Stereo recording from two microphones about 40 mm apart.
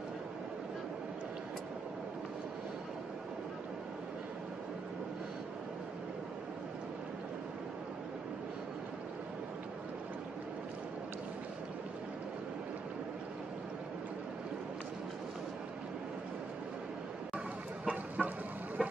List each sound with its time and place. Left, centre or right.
17.8 s chicken: right
18.8 s vehicle: centre